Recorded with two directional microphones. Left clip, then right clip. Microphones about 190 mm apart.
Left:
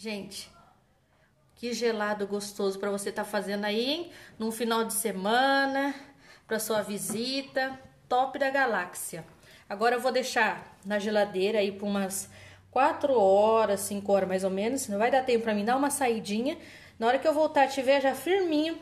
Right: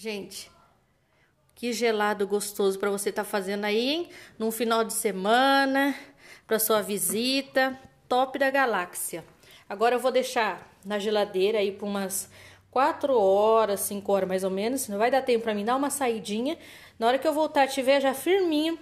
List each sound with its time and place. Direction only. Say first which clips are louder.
0.0 s a woman's voice: right 3 dB; 30° right (ahead or behind)
1.6 s a woman's voice: right 4 dB; 35° right (ahead or behind)